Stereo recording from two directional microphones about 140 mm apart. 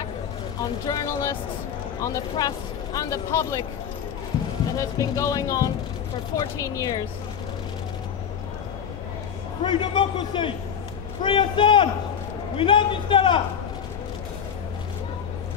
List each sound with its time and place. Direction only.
0.8 s speech: 25° left (ahead or behind)
4.7 s speech: 25° left (ahead or behind)
9.6 s a man's voice: 35° left (ahead or behind)